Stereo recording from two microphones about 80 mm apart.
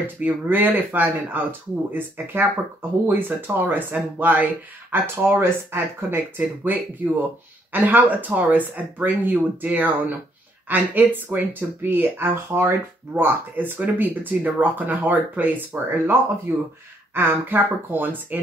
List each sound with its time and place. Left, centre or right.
0.0 s speech: right